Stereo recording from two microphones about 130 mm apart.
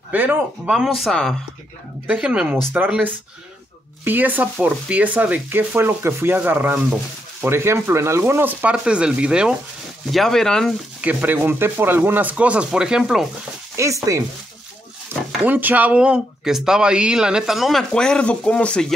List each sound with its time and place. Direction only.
0.1 s speech: 15° right (ahead or behind)
2.0 s stir: 10° right (ahead or behind)
10.1 s speech: 5° left (ahead or behind)
11.0 s stir: 15° right (ahead or behind)
13.8 s speech: 20° right (ahead or behind)
15.1 s a sound: 15° right (ahead or behind)
15.4 s speech: 15° right (ahead or behind); by 18.9 s 5° left (ahead or behind)